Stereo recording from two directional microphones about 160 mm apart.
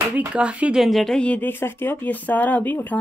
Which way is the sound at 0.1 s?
10° right (ahead or behind).